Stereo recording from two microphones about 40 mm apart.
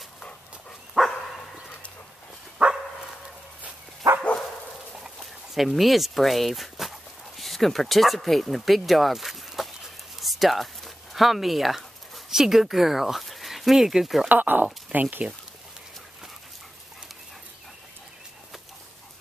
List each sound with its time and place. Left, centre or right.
0.9 s dog: centre
2.6 s dog: right
5.0 s a sound: centre
5.8 s speech: centre
10.2 s a sound: centre
12.3 s speech: centre
14.3 s speech: right